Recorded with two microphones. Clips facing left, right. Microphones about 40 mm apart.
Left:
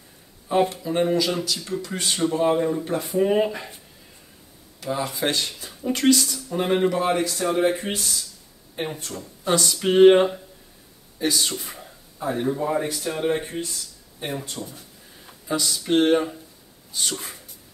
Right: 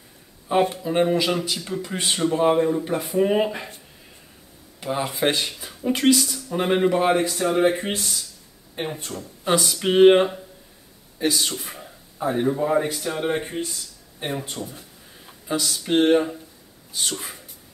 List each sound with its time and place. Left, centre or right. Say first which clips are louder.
0.5 s speech: right 1 dB; centre
4.7 s speech: right 1 dB; right
6.9 s speech: right 3 dB; right
9.5 s speech: even; centre
11.7 s speech: right 1 dB; centre
15.2 s speech: even; centre